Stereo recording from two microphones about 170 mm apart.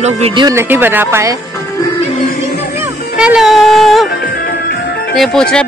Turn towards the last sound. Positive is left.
turn(degrees=5)  # may be behind; listen again after turning